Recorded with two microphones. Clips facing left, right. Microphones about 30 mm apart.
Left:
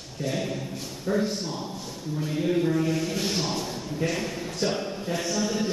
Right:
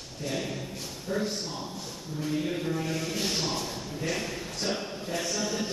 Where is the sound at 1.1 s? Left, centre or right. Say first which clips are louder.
Left 6 dB; centre.